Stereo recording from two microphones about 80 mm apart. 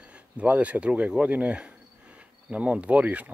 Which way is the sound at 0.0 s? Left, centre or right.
Centre.